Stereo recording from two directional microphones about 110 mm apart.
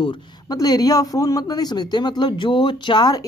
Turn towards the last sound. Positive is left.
turn(degrees=40)  # may be behind; listen again after turning